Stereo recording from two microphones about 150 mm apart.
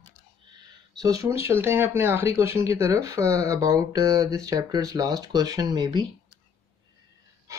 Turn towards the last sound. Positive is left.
turn(degrees=-25)  # may be behind; listen again after turning